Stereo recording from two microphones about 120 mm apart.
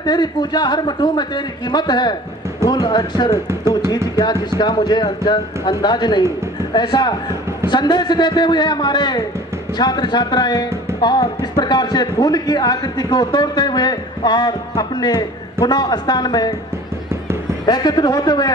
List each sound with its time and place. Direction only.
0.0 s speech: 35° left (ahead or behind)
3.4 s speech: 20° right (ahead or behind)
4.6 s speech: 40° left (ahead or behind)
17.6 s speech: 35° left (ahead or behind)